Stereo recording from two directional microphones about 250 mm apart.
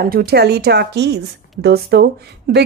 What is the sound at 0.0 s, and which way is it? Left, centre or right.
A woman's voice, right.